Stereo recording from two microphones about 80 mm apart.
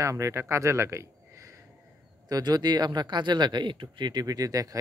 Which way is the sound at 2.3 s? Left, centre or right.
Right.